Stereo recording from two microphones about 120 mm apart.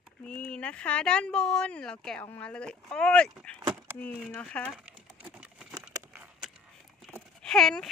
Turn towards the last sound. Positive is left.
turn(degrees=5)  # may be behind; listen again after turning